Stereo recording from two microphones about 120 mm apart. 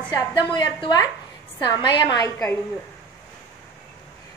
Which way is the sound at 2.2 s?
25° left (ahead or behind).